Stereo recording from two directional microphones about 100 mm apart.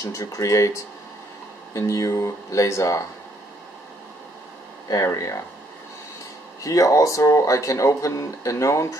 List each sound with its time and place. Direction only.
0.0 s speech: 30° left (ahead or behind)
5.0 s speech: 35° left (ahead or behind)
6.6 s speech: 35° left (ahead or behind)